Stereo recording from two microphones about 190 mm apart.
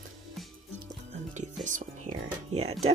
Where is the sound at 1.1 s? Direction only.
40° right (ahead or behind).